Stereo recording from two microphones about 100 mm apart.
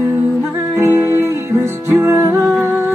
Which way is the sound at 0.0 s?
20° right (ahead or behind).